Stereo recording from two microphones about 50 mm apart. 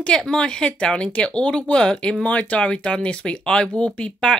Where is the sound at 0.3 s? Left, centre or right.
Centre.